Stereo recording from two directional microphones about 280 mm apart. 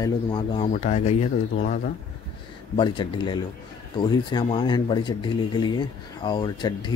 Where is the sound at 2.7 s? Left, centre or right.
Centre.